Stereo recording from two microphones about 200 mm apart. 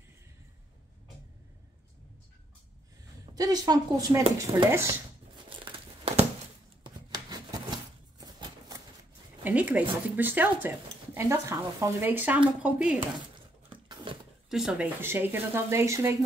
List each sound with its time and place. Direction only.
3.3 s speech: 20° right (ahead or behind)
5.7 s crumpling: 30° right (ahead or behind)
6.8 s rub: 20° right (ahead or behind)
8.2 s a sound: 20° right (ahead or behind)
9.4 s speech: 10° right (ahead or behind)
13.7 s a sound: 25° right (ahead or behind)
14.5 s speech: 5° right (ahead or behind)